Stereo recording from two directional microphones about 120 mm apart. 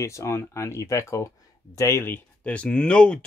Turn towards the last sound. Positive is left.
turn(degrees=10)  # may be behind; listen again after turning